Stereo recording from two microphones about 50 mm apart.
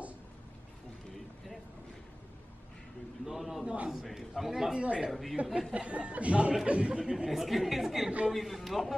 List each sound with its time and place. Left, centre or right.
3.3 s a sound: centre
3.6 s speech: right
3.9 s speech: centre
4.7 s speech: right
7.2 s speech: centre